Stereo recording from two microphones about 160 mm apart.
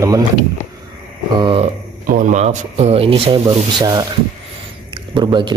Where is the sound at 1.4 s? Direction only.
35° right (ahead or behind).